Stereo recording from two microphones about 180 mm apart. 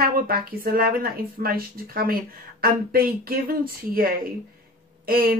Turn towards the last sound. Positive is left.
turn(degrees=-55)  # may be behind; listen again after turning